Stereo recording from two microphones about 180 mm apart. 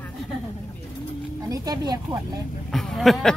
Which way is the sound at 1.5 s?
20° right (ahead or behind).